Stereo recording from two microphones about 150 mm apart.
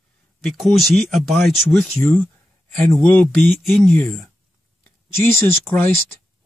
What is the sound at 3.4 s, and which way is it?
Speech, centre (ahead or behind).